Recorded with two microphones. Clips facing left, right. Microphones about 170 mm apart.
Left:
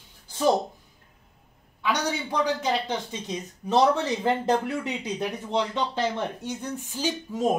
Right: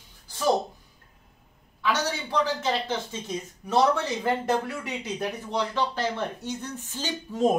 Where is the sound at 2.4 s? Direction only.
15° left (ahead or behind).